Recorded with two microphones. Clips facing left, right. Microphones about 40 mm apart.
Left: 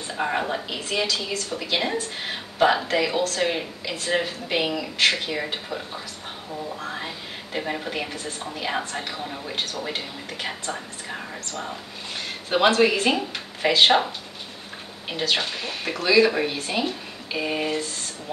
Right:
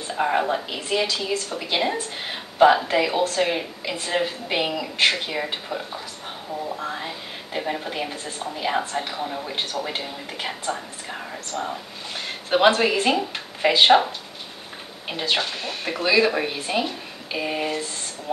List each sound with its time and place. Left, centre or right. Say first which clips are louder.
0.1 s speech: right 4 dB; centre
0.8 s a woman's voice: right 2 dB; centre
1.6 s a woman's voice: even; centre
3.9 s a woman's voice: even; centre
6.9 s speech: right 1 dB; centre
8.1 s a woman's voice: right 1 dB; right
8.5 s a woman's voice: right 4 dB; centre
12.4 s a woman's voice: right 1 dB; centre
15.0 s a woman's voice: even; centre
16.5 s a woman's voice: right 2 dB; centre
16.8 s speech: left 1 dB; centre